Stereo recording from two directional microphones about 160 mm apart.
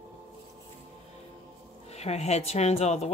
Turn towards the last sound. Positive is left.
turn(degrees=45)  # may be behind; listen again after turning